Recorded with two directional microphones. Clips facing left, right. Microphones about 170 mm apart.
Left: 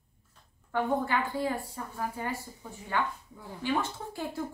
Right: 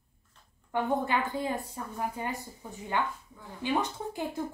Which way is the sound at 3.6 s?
15° right (ahead or behind).